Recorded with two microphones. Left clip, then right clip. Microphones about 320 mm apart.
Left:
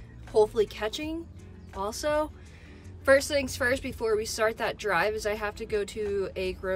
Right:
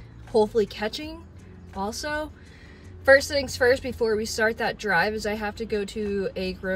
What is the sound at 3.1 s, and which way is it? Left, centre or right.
Speech, left.